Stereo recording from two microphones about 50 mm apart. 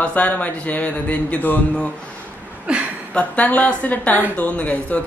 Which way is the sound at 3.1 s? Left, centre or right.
Left.